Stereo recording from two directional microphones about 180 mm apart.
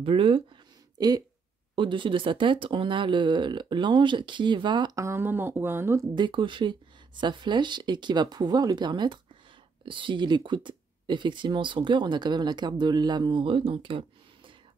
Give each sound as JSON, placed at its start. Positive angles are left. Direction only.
{"t": 0.0, "sound": "speech", "side_deg": -30}
{"t": 6.1, "sound": "speech", "side_deg": -25}